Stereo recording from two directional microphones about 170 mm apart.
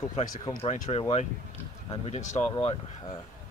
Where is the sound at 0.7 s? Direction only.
40° left (ahead or behind).